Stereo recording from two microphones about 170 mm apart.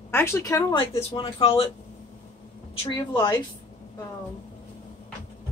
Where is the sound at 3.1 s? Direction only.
25° left (ahead or behind).